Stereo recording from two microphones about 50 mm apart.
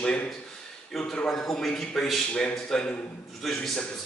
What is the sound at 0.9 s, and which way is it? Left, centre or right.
A man's voice, centre.